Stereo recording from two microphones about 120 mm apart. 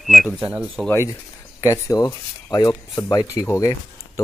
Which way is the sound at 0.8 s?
20° left (ahead or behind).